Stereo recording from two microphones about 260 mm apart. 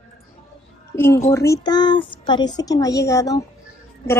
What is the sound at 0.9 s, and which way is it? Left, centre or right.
A woman's voice, centre.